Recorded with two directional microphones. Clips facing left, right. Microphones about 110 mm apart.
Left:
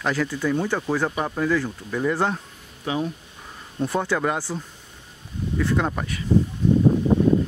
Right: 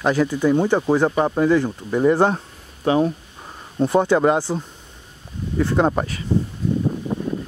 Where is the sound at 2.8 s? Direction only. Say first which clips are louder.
Right 8 dB; 50° right (ahead or behind).